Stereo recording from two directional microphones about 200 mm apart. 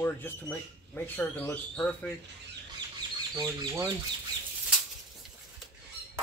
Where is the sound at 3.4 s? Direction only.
20° right (ahead or behind).